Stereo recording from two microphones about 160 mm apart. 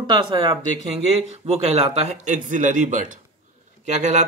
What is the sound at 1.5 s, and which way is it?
Speech, 40° right (ahead or behind).